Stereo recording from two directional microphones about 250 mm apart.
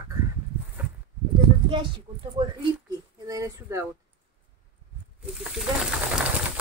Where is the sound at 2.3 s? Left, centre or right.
Centre.